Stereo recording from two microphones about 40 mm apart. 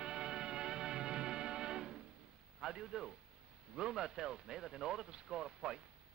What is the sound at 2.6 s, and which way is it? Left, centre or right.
A man's voice, centre.